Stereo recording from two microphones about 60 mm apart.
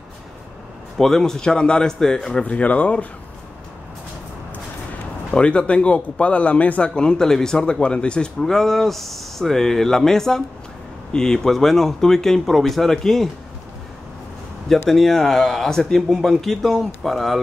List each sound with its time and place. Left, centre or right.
0.9 s speech: centre
2.4 s speech: left
5.3 s speech: centre
7.0 s speech: centre
8.4 s speech: centre
14.9 s speech: centre